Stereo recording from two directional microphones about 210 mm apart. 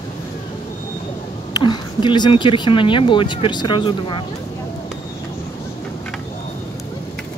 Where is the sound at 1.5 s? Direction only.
20° left (ahead or behind).